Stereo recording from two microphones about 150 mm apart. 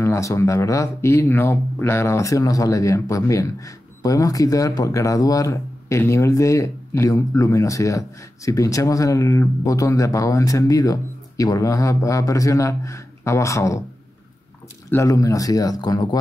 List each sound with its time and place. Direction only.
0.0 s speech: 20° left (ahead or behind)
14.9 s speech: 20° left (ahead or behind)